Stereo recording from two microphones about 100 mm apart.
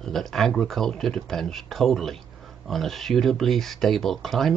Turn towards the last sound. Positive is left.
turn(degrees=5)  # may be behind; listen again after turning